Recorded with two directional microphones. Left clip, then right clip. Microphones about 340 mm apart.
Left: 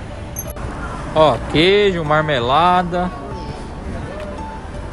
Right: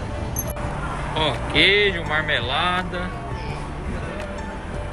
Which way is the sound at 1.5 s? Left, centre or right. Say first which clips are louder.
Left 3 dB; left.